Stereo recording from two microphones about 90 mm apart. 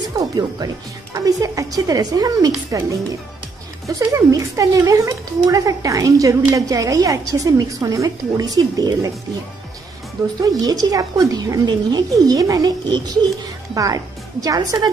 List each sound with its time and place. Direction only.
0.1 s a woman's voice: 40° right (ahead or behind)
3.8 s a woman's voice: 40° right (ahead or behind)
10.6 s a woman's voice: 45° right (ahead or behind)